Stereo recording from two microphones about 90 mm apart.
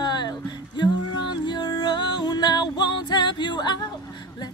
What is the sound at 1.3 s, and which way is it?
Music, 55° left (ahead or behind).